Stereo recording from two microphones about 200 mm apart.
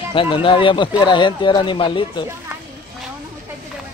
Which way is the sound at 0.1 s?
25° left (ahead or behind).